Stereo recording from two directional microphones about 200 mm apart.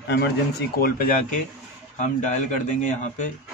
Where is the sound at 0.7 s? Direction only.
45° left (ahead or behind).